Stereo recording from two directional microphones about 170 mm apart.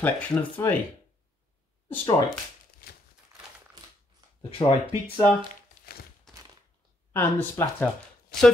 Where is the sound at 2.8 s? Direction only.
60° left (ahead or behind).